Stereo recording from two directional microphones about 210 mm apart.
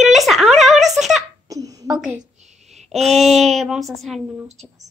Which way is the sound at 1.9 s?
5° right (ahead or behind).